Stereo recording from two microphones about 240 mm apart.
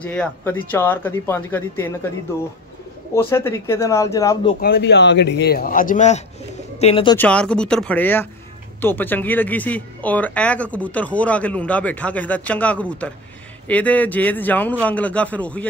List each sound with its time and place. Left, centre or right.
0.0 s speech: centre
3.2 s speech: centre
4.6 s a man's voice: left
7.2 s speech: centre